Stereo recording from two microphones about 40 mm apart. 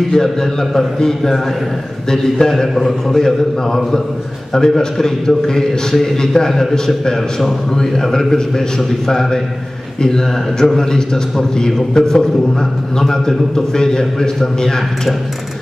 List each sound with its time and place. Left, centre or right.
0.1 s a man's voice: centre
2.7 s a man's voice: centre